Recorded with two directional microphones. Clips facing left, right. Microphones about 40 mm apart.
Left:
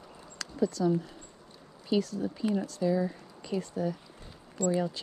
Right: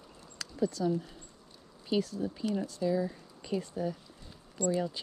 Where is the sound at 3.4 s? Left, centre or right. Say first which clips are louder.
Left 2 dB; centre.